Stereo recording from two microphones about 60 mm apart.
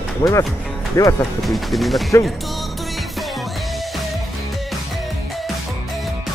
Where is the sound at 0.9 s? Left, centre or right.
Left.